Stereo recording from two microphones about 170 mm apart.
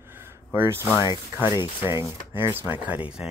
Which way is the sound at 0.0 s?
15° right (ahead or behind).